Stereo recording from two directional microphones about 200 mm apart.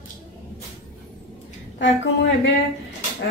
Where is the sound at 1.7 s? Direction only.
60° left (ahead or behind).